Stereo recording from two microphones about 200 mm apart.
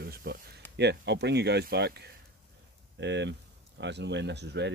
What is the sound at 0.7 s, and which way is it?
Speech, 55° right (ahead or behind).